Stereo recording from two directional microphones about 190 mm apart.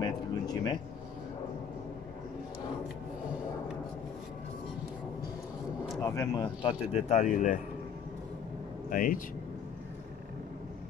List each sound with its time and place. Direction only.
0.0 s a sound: 20° left (ahead or behind)
5.9 s speech: 20° left (ahead or behind); by 7.5 s 40° left (ahead or behind)
8.9 s speech: 45° left (ahead or behind)